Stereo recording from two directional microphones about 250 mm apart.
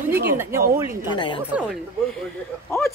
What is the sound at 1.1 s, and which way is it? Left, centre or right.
Speech, centre.